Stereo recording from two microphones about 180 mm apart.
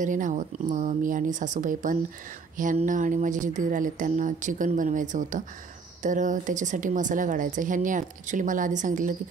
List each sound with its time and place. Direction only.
0.0 s a woman's voice: 45° right (ahead or behind)